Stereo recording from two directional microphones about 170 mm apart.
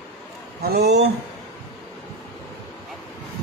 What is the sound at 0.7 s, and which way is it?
Speech, 80° right.